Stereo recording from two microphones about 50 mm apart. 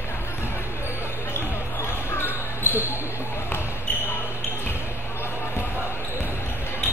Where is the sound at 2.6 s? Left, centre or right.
Right.